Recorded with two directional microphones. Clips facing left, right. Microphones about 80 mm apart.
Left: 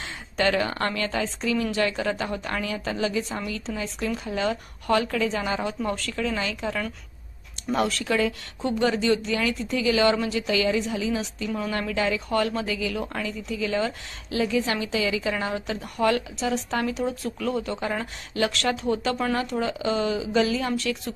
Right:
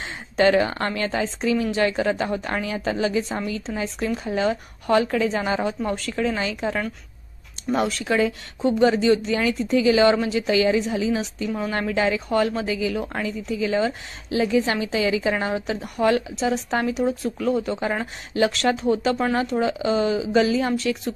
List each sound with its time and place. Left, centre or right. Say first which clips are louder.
0.0 s a woman's voice: right 6 dB; right